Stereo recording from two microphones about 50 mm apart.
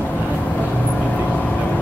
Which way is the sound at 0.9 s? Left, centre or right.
Left.